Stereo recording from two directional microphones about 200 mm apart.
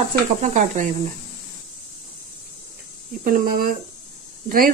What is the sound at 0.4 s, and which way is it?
Speech, 35° right (ahead or behind).